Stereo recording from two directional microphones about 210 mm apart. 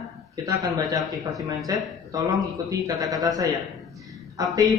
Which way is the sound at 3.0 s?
15° right (ahead or behind).